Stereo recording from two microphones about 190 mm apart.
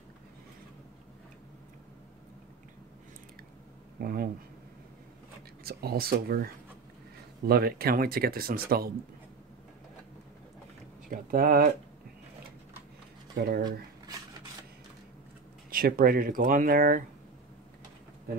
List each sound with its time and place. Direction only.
4.0 s speech: 50° right (ahead or behind)
5.6 s speech: 55° right (ahead or behind)
11.1 s speech: 50° right (ahead or behind)
13.4 s speech: 55° right (ahead or behind)
15.7 s speech: 50° right (ahead or behind)